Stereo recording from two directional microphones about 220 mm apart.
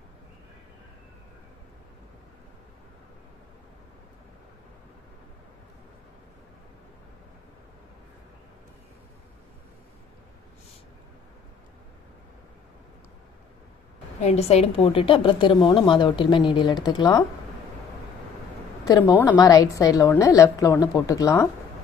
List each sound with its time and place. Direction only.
14.2 s a woman's voice: 30° left (ahead or behind)
18.9 s a woman's voice: 15° left (ahead or behind)